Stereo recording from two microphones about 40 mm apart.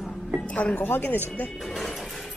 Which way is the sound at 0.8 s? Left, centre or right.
Left.